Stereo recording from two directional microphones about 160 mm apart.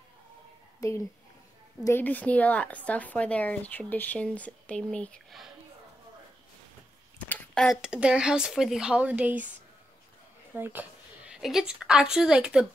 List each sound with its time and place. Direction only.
0.7 s a woman's voice: 20° left (ahead or behind); by 5.5 s 5° left (ahead or behind)
7.2 s speech: 5° left (ahead or behind); by 9.5 s 10° right (ahead or behind)
10.5 s a woman's voice: 10° right (ahead or behind)